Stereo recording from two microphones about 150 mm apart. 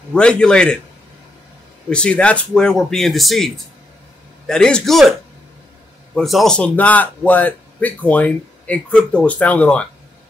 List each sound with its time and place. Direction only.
0.1 s speech: 5° left (ahead or behind)
1.9 s speech: 5° left (ahead or behind)
6.1 s a man's voice: centre (ahead or behind)